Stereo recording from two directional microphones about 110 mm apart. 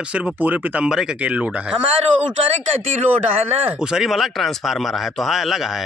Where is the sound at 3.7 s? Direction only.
5° right (ahead or behind).